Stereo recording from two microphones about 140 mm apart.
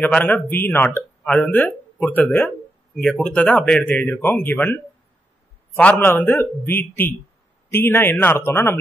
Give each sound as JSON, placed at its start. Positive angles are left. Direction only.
{"t": 0.0, "sound": "speech", "side_deg": 10}
{"t": 5.8, "sound": "speech", "side_deg": 15}